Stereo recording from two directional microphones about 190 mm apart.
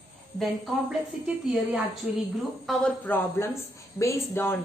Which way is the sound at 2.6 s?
5° left (ahead or behind).